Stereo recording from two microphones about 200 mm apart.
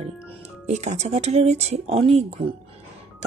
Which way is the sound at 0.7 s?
35° right (ahead or behind).